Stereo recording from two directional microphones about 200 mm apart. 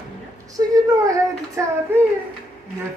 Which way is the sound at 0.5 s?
15° right (ahead or behind).